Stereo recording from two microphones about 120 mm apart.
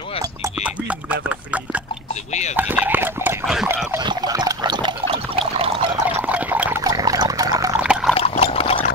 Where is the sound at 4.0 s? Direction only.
35° right (ahead or behind).